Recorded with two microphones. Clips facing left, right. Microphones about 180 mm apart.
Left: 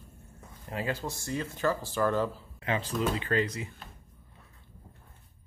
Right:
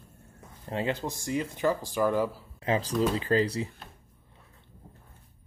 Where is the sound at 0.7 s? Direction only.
25° right (ahead or behind).